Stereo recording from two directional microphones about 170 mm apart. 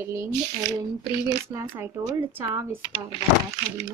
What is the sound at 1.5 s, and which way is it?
Speech, 15° right (ahead or behind).